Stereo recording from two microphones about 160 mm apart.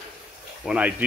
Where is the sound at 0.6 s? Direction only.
5° right (ahead or behind).